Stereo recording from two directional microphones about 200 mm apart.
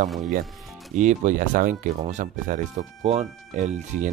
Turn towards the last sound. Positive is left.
turn(degrees=-35)  # may be behind; listen again after turning